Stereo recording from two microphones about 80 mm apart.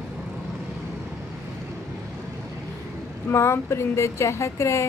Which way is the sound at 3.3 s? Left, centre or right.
Left.